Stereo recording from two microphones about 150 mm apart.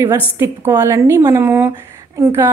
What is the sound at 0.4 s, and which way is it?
A woman's voice, 20° right (ahead or behind).